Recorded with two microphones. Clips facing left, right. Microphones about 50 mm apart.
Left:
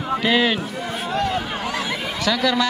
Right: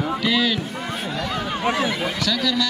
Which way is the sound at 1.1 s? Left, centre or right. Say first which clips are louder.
Left 7 dB; left.